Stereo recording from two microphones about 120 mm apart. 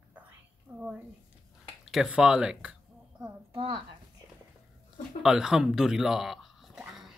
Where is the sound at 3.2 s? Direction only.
40° right (ahead or behind).